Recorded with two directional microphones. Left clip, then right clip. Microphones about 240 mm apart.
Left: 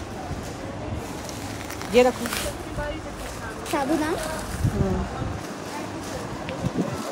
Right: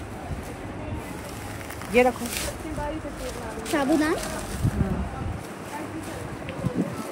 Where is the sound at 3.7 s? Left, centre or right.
Right.